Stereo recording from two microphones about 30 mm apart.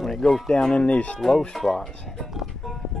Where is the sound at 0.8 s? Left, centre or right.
Left.